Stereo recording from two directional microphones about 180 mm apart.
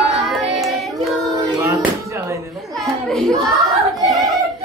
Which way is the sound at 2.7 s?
Centre (ahead or behind).